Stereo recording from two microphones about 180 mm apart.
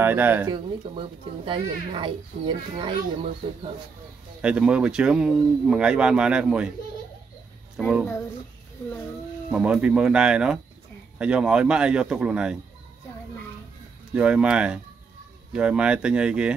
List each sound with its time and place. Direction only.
0.0 s speech: 10° right (ahead or behind)
0.5 s speech: 30° right (ahead or behind)
4.4 s speech: 5° right (ahead or behind)
7.8 s speech: 5° right (ahead or behind)
9.5 s speech: 5° right (ahead or behind)
14.1 s speech: 5° right (ahead or behind)